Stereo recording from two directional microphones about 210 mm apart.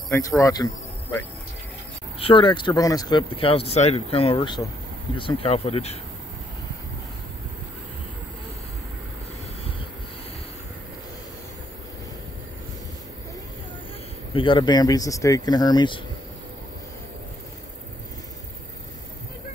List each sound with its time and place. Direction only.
0.4 s speech: 15° left (ahead or behind)
2.1 s speech: 25° left (ahead or behind)
14.3 s speech: 25° left (ahead or behind)